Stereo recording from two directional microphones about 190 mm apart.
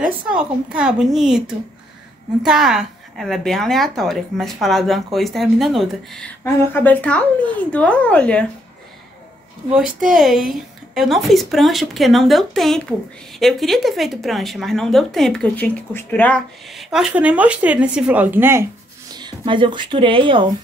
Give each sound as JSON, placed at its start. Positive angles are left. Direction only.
{"t": 0.3, "sound": "speech", "side_deg": -5}
{"t": 9.9, "sound": "speech", "side_deg": 0}
{"t": 19.1, "sound": "speech", "side_deg": -25}